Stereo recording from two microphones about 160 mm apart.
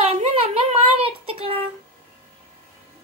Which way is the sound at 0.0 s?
35° right (ahead or behind).